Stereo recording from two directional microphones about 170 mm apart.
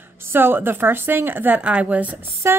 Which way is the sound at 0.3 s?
10° right (ahead or behind).